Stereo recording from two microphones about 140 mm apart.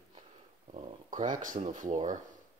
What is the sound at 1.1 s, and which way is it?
Speech, 70° right (ahead or behind).